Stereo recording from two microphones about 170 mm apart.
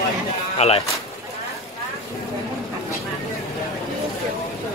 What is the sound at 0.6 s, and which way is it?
Speech, 40° left (ahead or behind).